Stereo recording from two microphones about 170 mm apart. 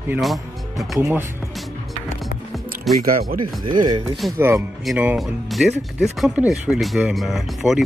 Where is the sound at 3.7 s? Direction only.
25° right (ahead or behind).